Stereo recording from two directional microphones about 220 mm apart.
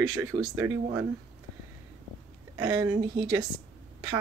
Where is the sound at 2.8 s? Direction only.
15° right (ahead or behind).